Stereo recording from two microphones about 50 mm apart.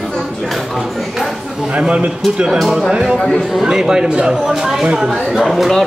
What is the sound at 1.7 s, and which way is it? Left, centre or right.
Speech, right.